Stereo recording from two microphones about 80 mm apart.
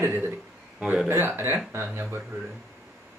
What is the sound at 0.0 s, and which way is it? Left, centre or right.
Speech, right.